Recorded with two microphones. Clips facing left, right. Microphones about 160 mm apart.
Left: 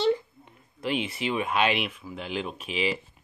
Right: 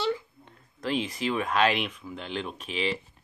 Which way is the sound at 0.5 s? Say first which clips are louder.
Left 1 dB; 10° left (ahead or behind).